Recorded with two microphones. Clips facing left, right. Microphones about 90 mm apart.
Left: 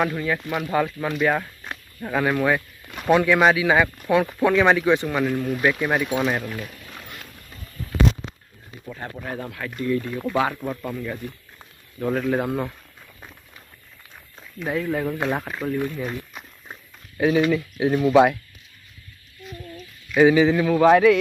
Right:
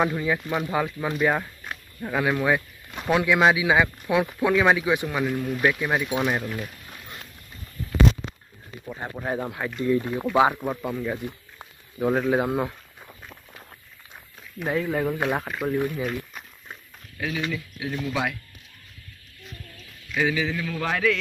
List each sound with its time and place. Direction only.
0.0 s speech: 15° right (ahead or behind)
0.5 s speech: centre (ahead or behind)
1.7 s a sound: centre (ahead or behind)
3.1 s speech: 10° right (ahead or behind)
6.0 s speech: 15° right (ahead or behind)
8.9 s speech: 25° right (ahead or behind); by 12.7 s 5° right (ahead or behind)
14.7 s speech: centre (ahead or behind)
15.1 s speech: 15° right (ahead or behind)
15.4 s speech: centre (ahead or behind)
15.7 s speech: 15° right (ahead or behind)
16.0 s run: centre (ahead or behind)
17.2 s speech: 35° left (ahead or behind)
20.3 s speech: 25° left (ahead or behind)